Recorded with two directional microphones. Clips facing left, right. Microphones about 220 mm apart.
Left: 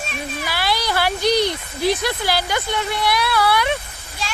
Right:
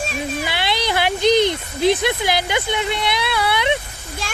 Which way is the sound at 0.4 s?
20° right (ahead or behind).